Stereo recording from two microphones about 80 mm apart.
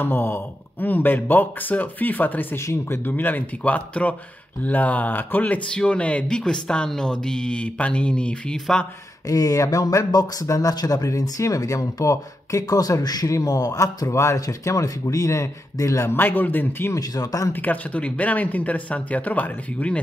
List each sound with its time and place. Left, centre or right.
0.0 s speech: left; by 8.8 s centre
9.3 s speech: left
16.9 s speech: left
17.5 s speech: left